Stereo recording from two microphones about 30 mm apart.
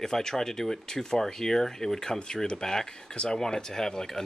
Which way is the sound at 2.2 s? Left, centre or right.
Left.